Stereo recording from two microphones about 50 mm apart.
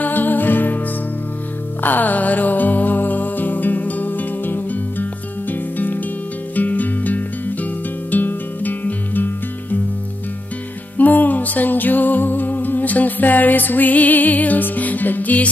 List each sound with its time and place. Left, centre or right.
0.0 s music: left
1.8 s music: left
11.0 s music: left